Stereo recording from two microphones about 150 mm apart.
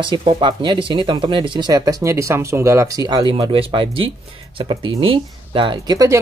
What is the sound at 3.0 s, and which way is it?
Speech, 30° right (ahead or behind).